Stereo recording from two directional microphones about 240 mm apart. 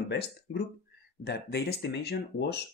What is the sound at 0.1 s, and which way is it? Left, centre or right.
Speech, left.